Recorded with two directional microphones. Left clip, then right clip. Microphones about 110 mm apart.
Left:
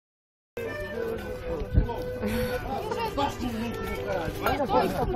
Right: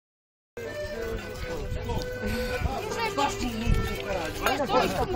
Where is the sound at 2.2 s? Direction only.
15° left (ahead or behind).